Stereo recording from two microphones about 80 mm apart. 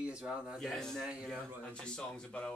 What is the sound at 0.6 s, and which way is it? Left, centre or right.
Speech, centre.